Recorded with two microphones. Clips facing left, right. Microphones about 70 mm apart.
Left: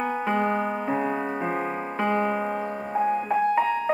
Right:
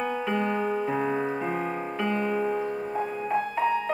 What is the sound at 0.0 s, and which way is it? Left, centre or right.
Music, left.